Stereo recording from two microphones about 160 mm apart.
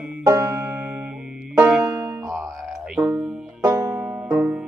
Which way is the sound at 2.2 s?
5° right (ahead or behind).